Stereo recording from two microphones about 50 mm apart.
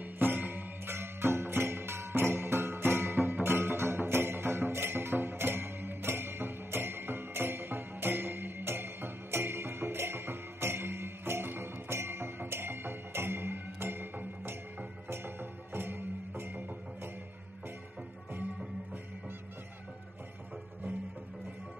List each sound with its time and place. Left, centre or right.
0.0 s music: right